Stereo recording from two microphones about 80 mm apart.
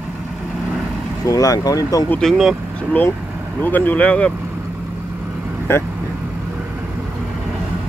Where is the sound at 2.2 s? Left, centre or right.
Centre.